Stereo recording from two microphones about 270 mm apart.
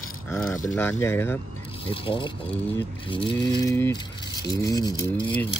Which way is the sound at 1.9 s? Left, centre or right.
Centre.